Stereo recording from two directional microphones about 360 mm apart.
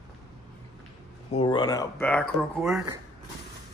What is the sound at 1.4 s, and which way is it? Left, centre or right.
Speech, centre.